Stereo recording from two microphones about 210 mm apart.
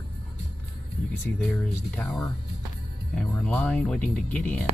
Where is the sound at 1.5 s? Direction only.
10° left (ahead or behind).